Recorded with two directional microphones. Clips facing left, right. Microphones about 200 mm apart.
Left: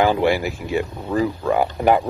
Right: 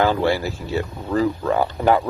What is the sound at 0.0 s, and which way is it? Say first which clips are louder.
Speech: left 1 dB; 15° left (ahead or behind).